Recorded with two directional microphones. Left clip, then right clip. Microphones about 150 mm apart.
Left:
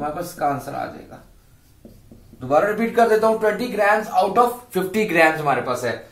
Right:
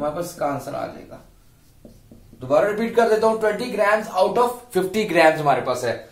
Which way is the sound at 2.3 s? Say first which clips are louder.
Even; 35° right (ahead or behind).